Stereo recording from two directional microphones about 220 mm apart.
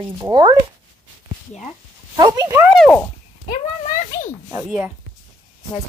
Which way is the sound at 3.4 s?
35° left (ahead or behind).